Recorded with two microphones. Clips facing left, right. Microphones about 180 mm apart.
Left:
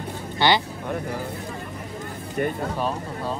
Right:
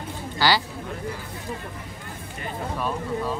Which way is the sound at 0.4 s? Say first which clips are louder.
Left 2 dB; 25° left (ahead or behind).